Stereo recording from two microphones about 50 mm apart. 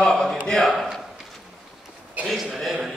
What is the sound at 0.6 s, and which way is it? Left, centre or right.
Speech, centre.